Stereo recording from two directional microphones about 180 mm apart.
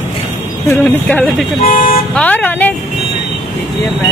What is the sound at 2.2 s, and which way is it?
Speech, 10° left (ahead or behind).